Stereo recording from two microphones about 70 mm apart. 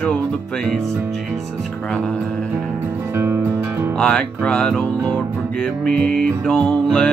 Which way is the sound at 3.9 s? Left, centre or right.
Centre.